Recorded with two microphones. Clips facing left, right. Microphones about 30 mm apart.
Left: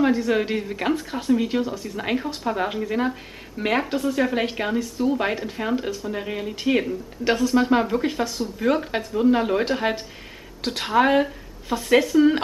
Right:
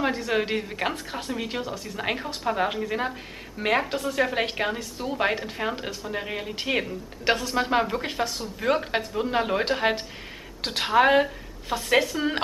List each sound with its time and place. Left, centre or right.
0.0 s a woman's voice: centre